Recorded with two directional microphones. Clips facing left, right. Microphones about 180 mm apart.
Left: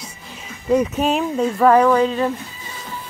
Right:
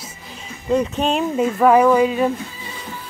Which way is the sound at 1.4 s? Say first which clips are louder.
Even; 10° right (ahead or behind).